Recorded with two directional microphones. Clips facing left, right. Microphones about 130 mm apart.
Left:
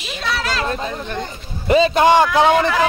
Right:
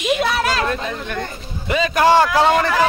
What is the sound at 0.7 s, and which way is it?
A man's voice, 30° left (ahead or behind).